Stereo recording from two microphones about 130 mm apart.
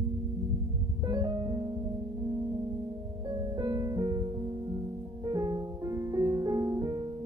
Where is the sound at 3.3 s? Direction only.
30° right (ahead or behind).